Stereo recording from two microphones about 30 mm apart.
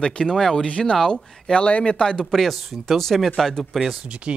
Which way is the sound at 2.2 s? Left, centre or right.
Centre.